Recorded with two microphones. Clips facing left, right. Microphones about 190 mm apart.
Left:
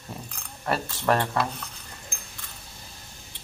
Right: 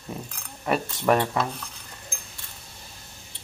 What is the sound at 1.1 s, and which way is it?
Speech, 10° right (ahead or behind).